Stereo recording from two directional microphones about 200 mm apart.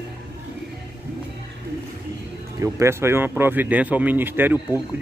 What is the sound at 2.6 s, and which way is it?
Speech, 15° right (ahead or behind).